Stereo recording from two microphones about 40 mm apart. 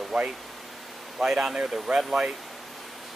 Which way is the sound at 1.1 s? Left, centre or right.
Centre.